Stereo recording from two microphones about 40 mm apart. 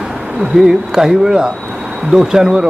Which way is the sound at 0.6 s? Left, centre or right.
Centre.